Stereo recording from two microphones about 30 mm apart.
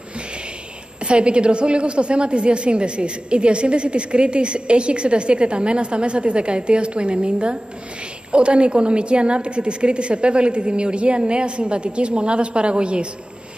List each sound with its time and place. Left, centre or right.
1.0 s a woman's voice: right